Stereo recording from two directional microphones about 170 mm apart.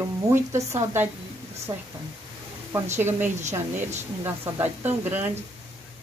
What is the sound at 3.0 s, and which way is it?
Speech, 10° right (ahead or behind).